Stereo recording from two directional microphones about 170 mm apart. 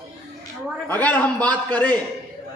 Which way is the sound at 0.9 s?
10° left (ahead or behind).